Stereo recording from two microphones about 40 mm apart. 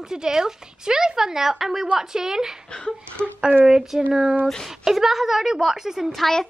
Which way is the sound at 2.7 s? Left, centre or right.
Left.